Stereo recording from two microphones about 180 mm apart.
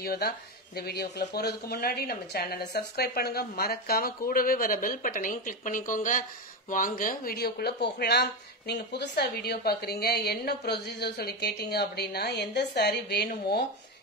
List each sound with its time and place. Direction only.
0.0 s speech: 60° left (ahead or behind)